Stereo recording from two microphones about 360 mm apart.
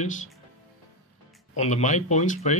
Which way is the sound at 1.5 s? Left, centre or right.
Centre.